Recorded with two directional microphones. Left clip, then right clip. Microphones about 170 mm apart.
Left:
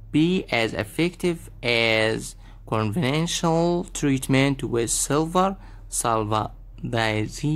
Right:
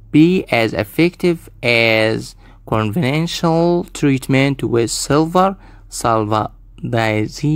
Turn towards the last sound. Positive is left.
turn(degrees=-30)  # may be behind; listen again after turning